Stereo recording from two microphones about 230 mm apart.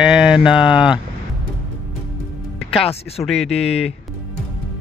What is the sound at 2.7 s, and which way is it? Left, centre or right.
Speech, centre.